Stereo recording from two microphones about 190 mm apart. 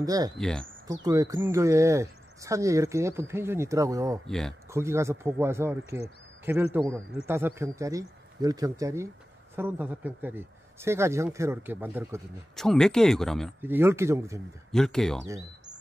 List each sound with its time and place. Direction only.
0.0 s speech: 20° right (ahead or behind)
0.4 s speech: 5° left (ahead or behind)
0.8 s speech: 20° right (ahead or behind)
4.3 s speech: 5° left (ahead or behind)
4.6 s speech: 15° right (ahead or behind)
12.5 s speech: 5° left (ahead or behind)
13.6 s speech: 10° right (ahead or behind)
14.7 s speech: 5° left (ahead or behind)